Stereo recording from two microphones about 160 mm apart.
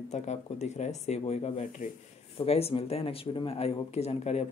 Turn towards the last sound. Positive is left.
turn(degrees=40)  # may be behind; listen again after turning